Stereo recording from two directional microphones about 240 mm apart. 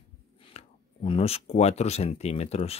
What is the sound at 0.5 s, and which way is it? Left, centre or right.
Speech, left.